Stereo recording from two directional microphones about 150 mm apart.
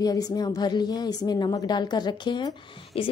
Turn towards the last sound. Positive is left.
turn(degrees=40)  # may be behind; listen again after turning